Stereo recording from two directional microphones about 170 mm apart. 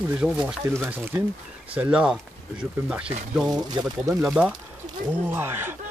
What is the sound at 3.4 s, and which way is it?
Speech, 25° right (ahead or behind).